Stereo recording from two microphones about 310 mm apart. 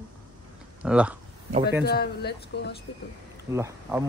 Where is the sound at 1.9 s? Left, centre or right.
Left.